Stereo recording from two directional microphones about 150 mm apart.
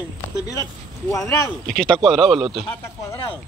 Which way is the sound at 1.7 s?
5° left (ahead or behind).